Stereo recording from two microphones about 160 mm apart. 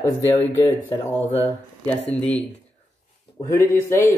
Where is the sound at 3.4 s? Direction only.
15° left (ahead or behind).